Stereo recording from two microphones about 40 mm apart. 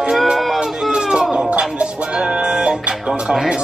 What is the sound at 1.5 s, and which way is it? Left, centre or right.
Music, right.